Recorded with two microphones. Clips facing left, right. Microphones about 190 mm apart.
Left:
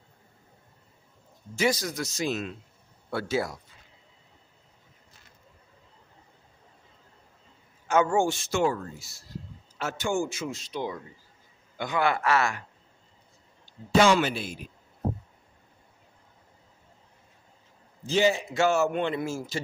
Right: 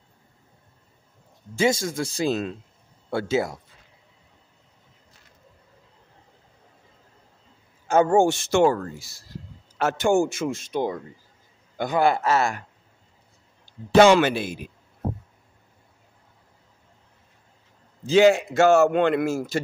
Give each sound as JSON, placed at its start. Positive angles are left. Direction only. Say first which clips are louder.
{"t": 1.5, "sound": "speech", "louder": "right 4 dB", "side_deg": -25}
{"t": 7.9, "sound": "speech", "louder": "right 5 dB", "side_deg": -35}
{"t": 8.2, "sound": "speech", "louder": "right 7 dB", "side_deg": -75}
{"t": 9.8, "sound": "speech", "louder": "right 8 dB", "side_deg": -50}
{"t": 11.7, "sound": "speech", "louder": "right 5 dB", "side_deg": -40}
{"t": 13.9, "sound": "speech", "louder": "right 6 dB", "side_deg": -70}
{"t": 18.5, "sound": "speech", "louder": "right 7 dB", "side_deg": -45}
{"t": 19.0, "sound": "a man's voice", "louder": "right 8 dB", "side_deg": -65}